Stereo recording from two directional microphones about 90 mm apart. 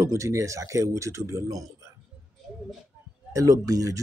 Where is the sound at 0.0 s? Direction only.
35° right (ahead or behind).